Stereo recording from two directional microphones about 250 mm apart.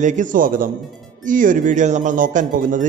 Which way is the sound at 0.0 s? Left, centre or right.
Right.